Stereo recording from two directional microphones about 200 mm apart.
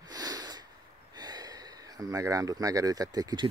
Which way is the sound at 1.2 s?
20° right (ahead or behind).